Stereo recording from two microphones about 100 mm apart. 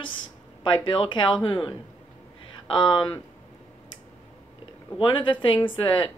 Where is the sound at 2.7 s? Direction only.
55° left (ahead or behind).